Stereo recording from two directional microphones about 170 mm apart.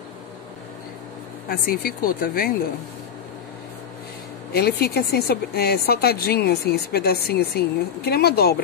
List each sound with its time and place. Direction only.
1.5 s speech: 60° left (ahead or behind)
4.5 s speech: 65° left (ahead or behind)